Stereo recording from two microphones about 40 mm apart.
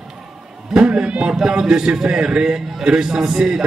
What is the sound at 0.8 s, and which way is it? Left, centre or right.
Speech, right.